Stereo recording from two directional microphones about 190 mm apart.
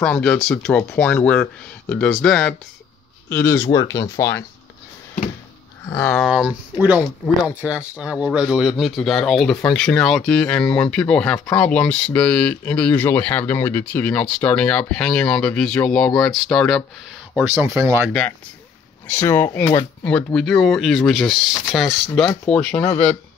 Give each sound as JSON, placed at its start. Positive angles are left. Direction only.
{"t": 0.0, "sound": "speech", "side_deg": 5}
{"t": 5.9, "sound": "speech", "side_deg": 10}
{"t": 17.4, "sound": "speech", "side_deg": -10}
{"t": 19.0, "sound": "speech", "side_deg": 10}